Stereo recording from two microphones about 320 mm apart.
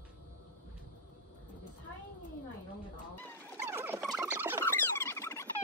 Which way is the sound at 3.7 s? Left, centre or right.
Centre.